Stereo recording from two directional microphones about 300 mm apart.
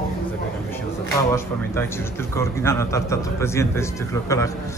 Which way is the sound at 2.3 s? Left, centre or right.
Centre.